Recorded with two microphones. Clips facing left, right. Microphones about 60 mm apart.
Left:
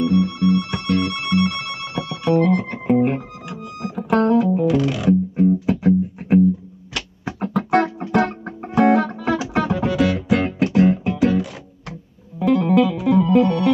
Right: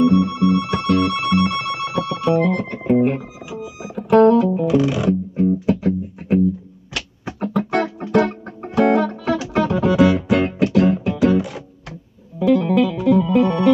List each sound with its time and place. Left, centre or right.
0.0 s music: centre
5.3 s music: centre
6.1 s music: centre
7.8 s music: left
8.6 s guitar: centre
9.2 s music: centre
9.9 s music: centre
12.4 s music: centre